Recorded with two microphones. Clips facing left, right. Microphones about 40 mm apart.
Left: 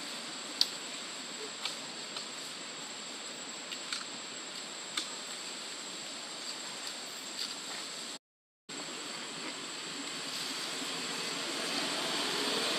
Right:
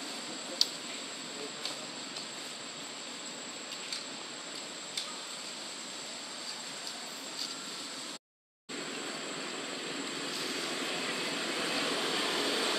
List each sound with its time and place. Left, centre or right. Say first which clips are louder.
10.4 s vehicle: right 4 dB; centre
10.8 s vehicle: right 3 dB; right; by 12.7 s centre